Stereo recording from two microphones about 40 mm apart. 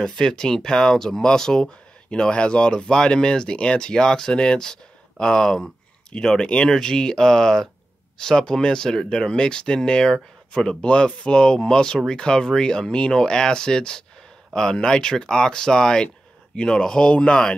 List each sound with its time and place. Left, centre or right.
0.0 s speech: centre